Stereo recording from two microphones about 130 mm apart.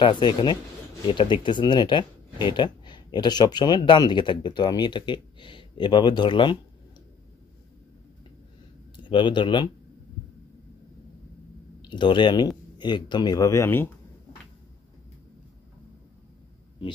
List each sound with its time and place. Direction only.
0.0 s speech: 40° left (ahead or behind)
9.0 s speech: 40° left (ahead or behind)
11.8 s speech: 35° left (ahead or behind); by 13.8 s 20° left (ahead or behind)